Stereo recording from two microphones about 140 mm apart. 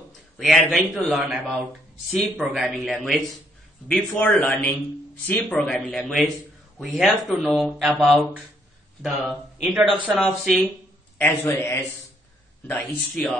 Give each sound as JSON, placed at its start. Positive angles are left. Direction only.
{"t": 0.4, "sound": "speech", "side_deg": 0}
{"t": 11.1, "sound": "speech", "side_deg": 15}